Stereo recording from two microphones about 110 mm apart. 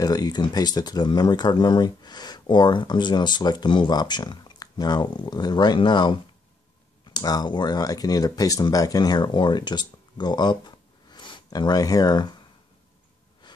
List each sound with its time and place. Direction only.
0.0 s speech: 35° left (ahead or behind)